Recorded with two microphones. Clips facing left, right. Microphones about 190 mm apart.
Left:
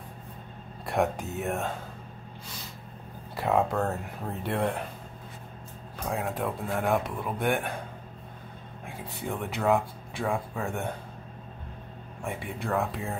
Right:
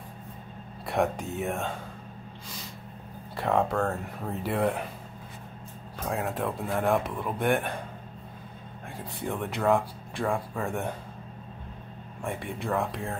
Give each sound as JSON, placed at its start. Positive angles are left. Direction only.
{"t": 0.8, "sound": "speech", "side_deg": 0}
{"t": 3.3, "sound": "speech", "side_deg": 5}
{"t": 5.9, "sound": "speech", "side_deg": 0}
{"t": 8.8, "sound": "speech", "side_deg": 0}
{"t": 12.2, "sound": "speech", "side_deg": 0}